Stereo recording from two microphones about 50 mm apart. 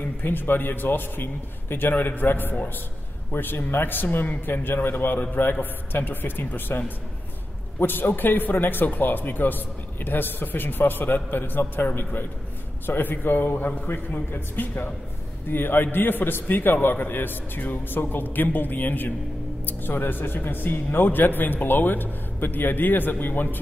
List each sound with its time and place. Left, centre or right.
0.2 s a man's voice: left
7.8 s a man's voice: left